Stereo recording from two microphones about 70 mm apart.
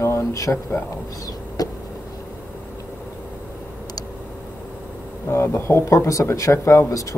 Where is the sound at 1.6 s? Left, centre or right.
Left.